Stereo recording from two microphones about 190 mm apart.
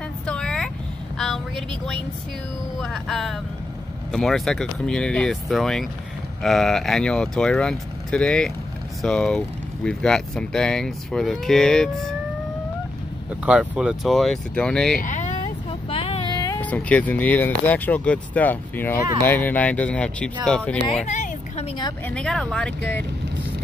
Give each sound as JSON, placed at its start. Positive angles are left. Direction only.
{"t": 0.3, "sound": "vehicle", "side_deg": 5}
{"t": 2.8, "sound": "speech", "side_deg": 0}
{"t": 13.5, "sound": "speech", "side_deg": -5}
{"t": 15.0, "sound": "vehicle", "side_deg": 40}
{"t": 16.6, "sound": "speech", "side_deg": 10}
{"t": 21.0, "sound": "a sound", "side_deg": 40}
{"t": 22.0, "sound": "speech", "side_deg": 5}